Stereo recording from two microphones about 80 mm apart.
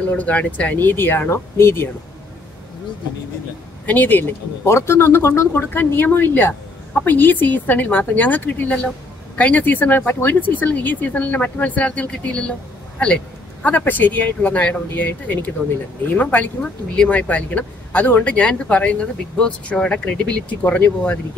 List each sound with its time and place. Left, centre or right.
0.1 s speech: centre
3.8 s speech: left